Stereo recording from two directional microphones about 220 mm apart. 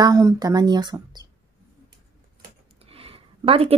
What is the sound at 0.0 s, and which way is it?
Speech, 15° right (ahead or behind).